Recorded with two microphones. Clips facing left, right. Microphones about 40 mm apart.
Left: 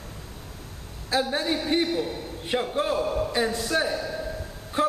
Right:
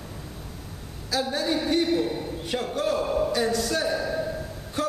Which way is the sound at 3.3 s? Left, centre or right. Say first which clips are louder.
Even; centre.